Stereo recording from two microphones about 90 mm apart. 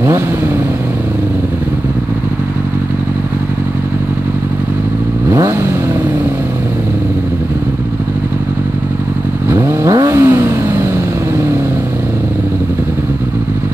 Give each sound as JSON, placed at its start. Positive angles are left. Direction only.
{"t": 9.5, "sound": "vehicle", "side_deg": -35}